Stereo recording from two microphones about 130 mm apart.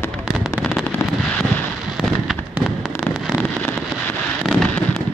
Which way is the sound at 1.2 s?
10° left (ahead or behind).